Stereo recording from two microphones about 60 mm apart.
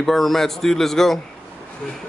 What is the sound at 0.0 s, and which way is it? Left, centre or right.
A man's voice, centre.